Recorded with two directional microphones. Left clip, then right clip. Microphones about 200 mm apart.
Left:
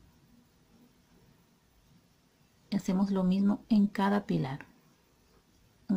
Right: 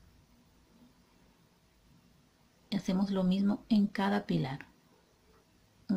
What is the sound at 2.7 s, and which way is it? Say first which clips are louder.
Speech: left 2 dB; 15° left (ahead or behind).